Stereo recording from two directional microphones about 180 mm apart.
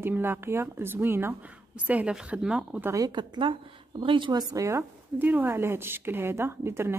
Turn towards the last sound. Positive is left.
turn(degrees=-15)  # may be behind; listen again after turning